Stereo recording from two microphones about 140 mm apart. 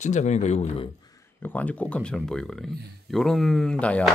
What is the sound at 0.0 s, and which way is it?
Speech, 55° left (ahead or behind).